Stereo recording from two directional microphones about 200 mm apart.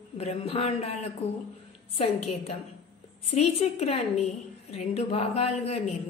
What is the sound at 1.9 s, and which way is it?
A woman's voice, 30° left (ahead or behind).